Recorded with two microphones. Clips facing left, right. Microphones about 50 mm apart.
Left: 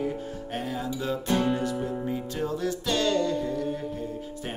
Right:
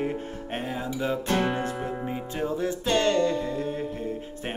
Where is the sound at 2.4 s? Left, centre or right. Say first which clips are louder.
Right 3 dB; right.